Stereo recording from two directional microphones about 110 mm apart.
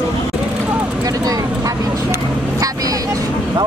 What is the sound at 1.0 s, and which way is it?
Speech, 35° right (ahead or behind).